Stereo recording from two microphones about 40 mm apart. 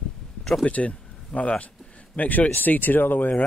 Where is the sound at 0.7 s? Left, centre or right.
Left.